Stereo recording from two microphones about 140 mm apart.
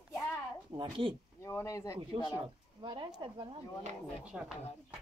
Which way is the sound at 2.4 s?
35° right (ahead or behind).